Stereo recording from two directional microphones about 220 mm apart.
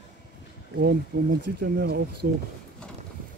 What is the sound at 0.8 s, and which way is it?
Speech, 45° right (ahead or behind).